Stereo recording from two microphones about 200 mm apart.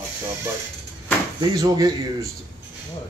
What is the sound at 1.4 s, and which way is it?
Speech, 15° right (ahead or behind).